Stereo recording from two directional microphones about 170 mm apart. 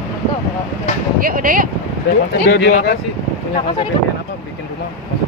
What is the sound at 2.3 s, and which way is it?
Speech, 80° left.